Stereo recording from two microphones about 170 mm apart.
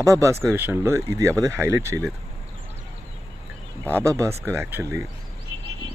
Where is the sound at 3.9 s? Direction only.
15° right (ahead or behind).